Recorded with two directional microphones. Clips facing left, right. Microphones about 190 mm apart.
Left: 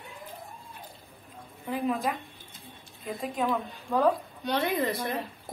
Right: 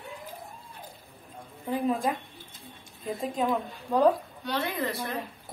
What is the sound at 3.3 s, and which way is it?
Speech, 20° right (ahead or behind).